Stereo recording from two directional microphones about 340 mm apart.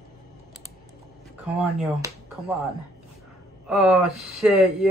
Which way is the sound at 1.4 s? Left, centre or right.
Centre.